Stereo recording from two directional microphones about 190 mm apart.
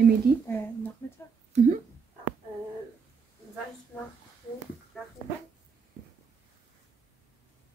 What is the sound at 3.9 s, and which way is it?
Speech, 10° left (ahead or behind).